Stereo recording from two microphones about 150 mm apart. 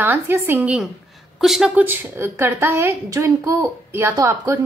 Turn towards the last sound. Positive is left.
turn(degrees=-20)  # may be behind; listen again after turning